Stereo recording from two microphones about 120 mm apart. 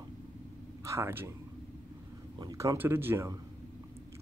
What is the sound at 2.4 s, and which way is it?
Speech, 30° right (ahead or behind).